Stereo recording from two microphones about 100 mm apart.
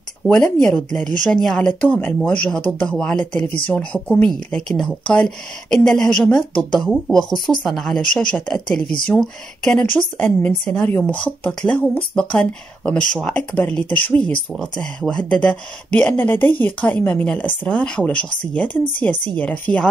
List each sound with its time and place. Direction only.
0.2 s speech: 30° right (ahead or behind)
0.6 s speech: 10° left (ahead or behind)
9.8 s speech: 20° left (ahead or behind)